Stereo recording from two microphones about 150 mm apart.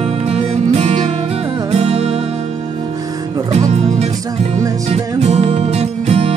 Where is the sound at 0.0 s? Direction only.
40° right (ahead or behind).